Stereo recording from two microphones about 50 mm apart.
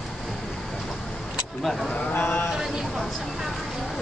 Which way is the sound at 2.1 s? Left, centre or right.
Left.